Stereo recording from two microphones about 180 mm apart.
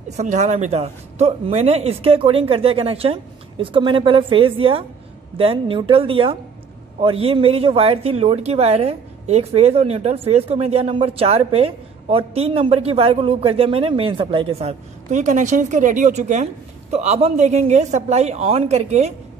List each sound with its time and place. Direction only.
0.1 s a woman's voice: 40° right (ahead or behind)